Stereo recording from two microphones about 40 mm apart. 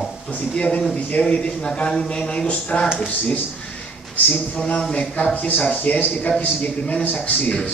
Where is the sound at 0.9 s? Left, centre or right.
Left.